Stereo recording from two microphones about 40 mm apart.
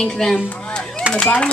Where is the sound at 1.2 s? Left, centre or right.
Left.